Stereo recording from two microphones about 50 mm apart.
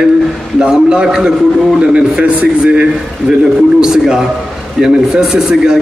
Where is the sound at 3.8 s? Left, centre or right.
Centre.